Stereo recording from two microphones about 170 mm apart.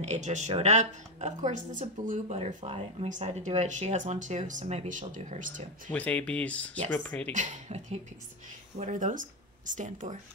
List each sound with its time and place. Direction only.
0.0 s a woman's voice: 45° right (ahead or behind)
5.9 s speech: 10° left (ahead or behind)
7.3 s a woman's voice: 45° right (ahead or behind)